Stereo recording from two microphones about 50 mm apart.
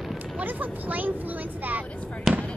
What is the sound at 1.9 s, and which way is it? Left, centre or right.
Fireworks, left.